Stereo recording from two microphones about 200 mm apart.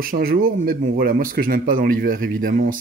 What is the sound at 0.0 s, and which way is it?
A man's voice, 45° right (ahead or behind).